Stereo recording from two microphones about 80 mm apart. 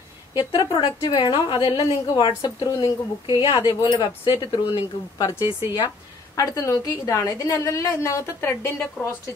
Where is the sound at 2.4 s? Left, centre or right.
Left.